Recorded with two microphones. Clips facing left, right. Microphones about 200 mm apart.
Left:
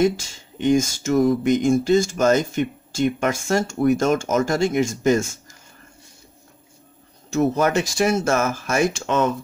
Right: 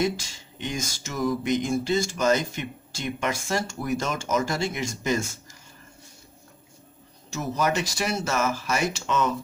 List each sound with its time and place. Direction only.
0.6 s speech: 50° left (ahead or behind)
7.2 s speech: 55° left (ahead or behind)